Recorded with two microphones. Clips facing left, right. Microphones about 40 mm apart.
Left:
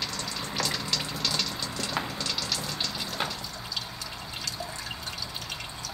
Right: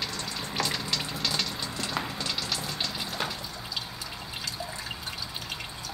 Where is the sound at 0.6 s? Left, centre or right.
Centre.